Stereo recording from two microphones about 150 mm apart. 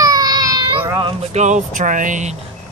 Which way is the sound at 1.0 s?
45° right (ahead or behind).